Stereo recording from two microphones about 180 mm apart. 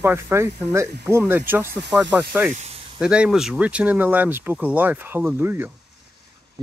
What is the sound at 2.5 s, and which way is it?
Snake, 35° right (ahead or behind).